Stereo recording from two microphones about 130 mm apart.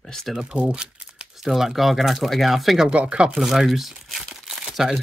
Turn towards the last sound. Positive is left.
turn(degrees=-5)  # may be behind; listen again after turning